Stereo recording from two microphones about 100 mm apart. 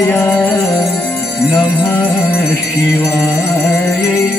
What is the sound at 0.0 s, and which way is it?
Music, 25° left (ahead or behind).